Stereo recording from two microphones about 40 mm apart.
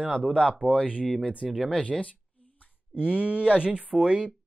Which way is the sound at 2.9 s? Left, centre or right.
Right.